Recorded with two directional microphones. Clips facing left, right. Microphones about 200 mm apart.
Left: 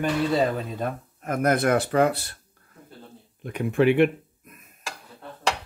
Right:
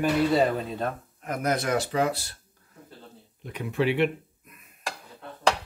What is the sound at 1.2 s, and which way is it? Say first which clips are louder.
Speech: left 5 dB; 50° left (ahead or behind).